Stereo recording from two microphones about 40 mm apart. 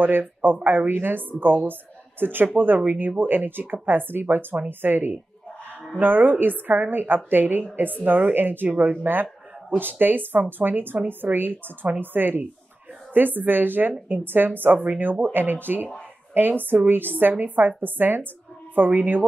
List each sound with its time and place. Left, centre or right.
0.0 s a woman's voice: right
9.0 s a woman's voice: right